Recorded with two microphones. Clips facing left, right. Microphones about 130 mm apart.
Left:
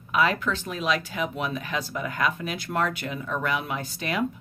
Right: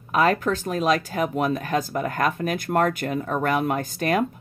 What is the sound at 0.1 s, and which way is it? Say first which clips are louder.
Speech: right 4 dB; 45° right (ahead or behind).